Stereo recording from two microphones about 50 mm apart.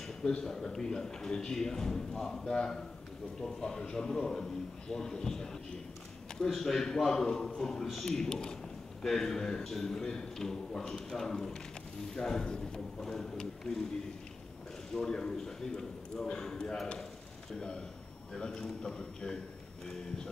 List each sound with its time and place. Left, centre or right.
0.2 s speech: centre
4.2 s a man's voice: centre
4.8 s speech: centre
13.0 s speech: centre
15.0 s speech: centre
17.6 s speech: centre